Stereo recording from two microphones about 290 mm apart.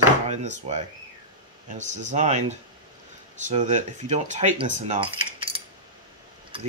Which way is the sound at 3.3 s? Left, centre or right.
Right.